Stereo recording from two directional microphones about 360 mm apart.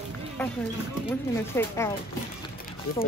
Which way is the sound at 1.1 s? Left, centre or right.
Centre.